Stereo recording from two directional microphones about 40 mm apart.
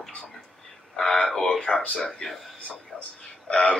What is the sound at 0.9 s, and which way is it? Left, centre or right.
Speech, centre.